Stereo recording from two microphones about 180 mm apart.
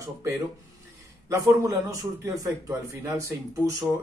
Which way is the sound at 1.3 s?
15° right (ahead or behind).